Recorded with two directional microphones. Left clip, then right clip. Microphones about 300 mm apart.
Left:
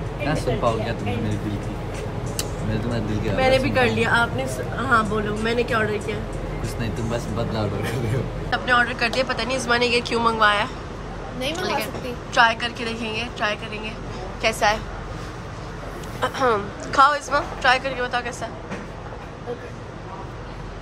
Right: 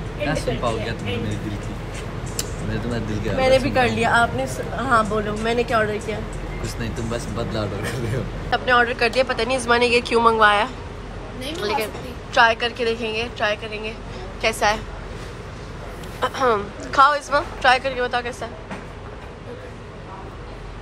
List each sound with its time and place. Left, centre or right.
0.3 s speech: centre
2.7 s speech: centre
3.3 s a man's voice: centre
6.8 s a man's voice: centre
16.2 s a man's voice: centre